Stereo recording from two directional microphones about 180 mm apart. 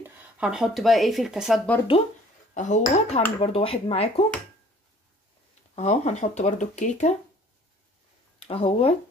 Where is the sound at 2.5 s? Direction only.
40° left (ahead or behind).